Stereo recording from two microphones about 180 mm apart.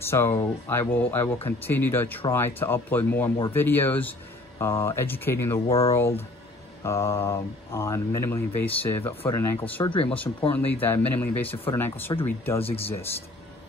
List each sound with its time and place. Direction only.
0.0 s speech: 15° left (ahead or behind)
5.7 s speech: 35° left (ahead or behind)
5.9 s speech: 15° left (ahead or behind)
12.6 s speech: 30° left (ahead or behind)